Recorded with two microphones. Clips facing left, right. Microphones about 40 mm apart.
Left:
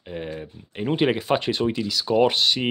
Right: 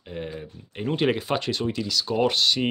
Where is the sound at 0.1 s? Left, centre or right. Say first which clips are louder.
Left 2 dB; centre.